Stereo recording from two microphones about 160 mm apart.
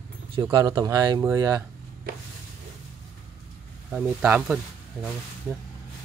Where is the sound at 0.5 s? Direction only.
25° right (ahead or behind).